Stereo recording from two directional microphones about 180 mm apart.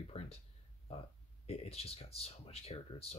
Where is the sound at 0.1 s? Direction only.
35° left (ahead or behind).